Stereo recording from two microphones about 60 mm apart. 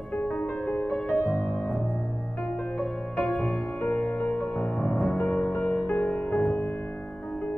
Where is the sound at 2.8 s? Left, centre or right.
Left.